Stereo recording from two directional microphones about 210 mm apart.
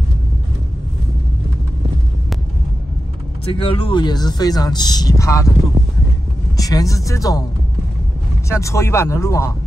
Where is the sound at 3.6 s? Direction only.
25° left (ahead or behind).